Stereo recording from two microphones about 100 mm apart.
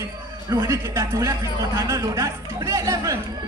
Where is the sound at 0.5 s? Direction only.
30° right (ahead or behind).